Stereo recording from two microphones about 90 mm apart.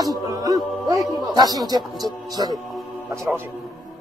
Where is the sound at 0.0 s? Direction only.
45° right (ahead or behind).